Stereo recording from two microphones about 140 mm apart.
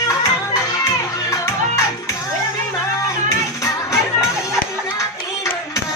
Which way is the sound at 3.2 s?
20° left (ahead or behind).